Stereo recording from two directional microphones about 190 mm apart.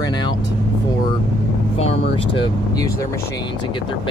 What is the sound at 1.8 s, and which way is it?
Speech, 30° left (ahead or behind).